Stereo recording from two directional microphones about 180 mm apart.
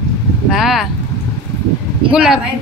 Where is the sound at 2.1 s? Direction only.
5° right (ahead or behind).